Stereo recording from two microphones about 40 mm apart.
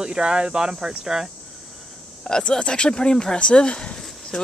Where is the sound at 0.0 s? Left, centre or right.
Right.